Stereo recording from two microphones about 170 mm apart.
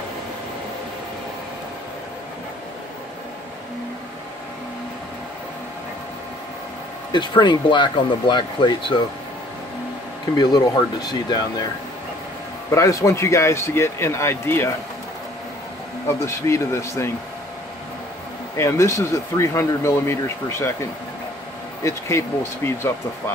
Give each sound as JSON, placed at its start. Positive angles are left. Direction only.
{"t": 7.1, "sound": "speech", "side_deg": 25}
{"t": 10.3, "sound": "speech", "side_deg": 25}
{"t": 12.7, "sound": "speech", "side_deg": 20}
{"t": 16.1, "sound": "speech", "side_deg": 15}
{"t": 18.6, "sound": "speech", "side_deg": 15}
{"t": 21.8, "sound": "speech", "side_deg": 15}